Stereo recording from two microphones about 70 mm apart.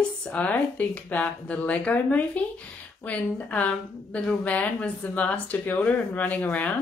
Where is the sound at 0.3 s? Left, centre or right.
Left.